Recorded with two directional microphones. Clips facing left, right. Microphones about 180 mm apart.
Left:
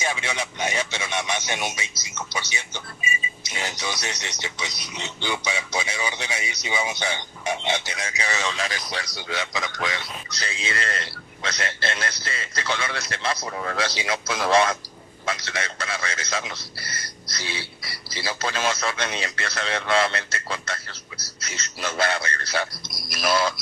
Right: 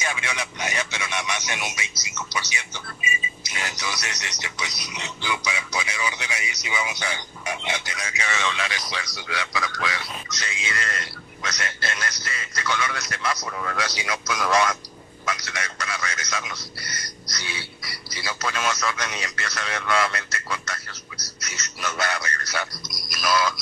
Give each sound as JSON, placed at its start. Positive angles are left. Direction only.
{"t": 0.1, "sound": "speech", "side_deg": 30}